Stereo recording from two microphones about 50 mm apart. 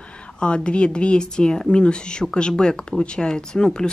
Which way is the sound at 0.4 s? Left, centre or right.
Left.